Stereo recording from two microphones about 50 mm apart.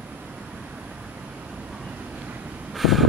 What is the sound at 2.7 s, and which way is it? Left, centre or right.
Vehicle, centre.